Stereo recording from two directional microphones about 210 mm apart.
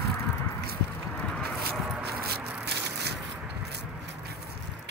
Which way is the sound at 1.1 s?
5° left (ahead or behind).